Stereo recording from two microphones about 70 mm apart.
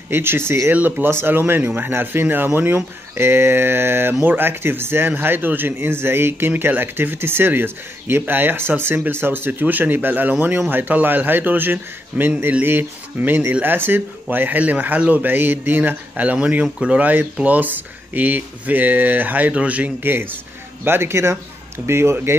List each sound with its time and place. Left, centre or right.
0.1 s speech: right
0.7 s a man's voice: right